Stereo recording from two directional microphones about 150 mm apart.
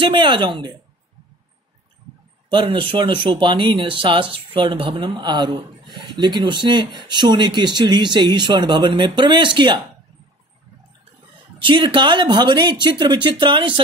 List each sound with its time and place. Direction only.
0.0 s speech: 35° right (ahead or behind)
2.5 s speech: 35° right (ahead or behind)
11.6 s speech: 35° right (ahead or behind)